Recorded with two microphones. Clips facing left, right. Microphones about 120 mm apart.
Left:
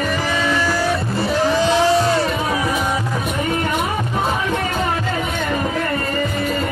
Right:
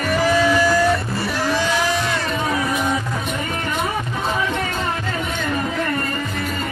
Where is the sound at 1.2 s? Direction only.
25° left (ahead or behind).